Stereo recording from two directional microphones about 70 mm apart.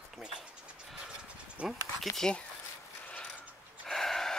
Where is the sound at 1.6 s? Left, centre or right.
Centre.